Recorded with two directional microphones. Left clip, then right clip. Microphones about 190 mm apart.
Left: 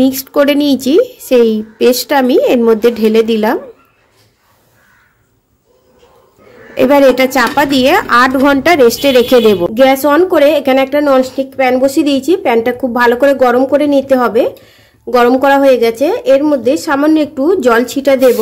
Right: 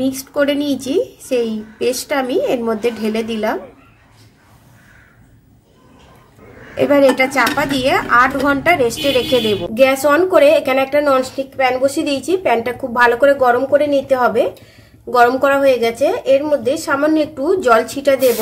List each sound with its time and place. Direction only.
0.0 s a woman's voice: 45° left (ahead or behind)
6.7 s a woman's voice: 45° left (ahead or behind)
9.8 s a woman's voice: 30° left (ahead or behind)